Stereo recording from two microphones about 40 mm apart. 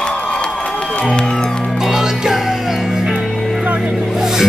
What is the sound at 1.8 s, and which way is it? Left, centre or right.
Music, centre.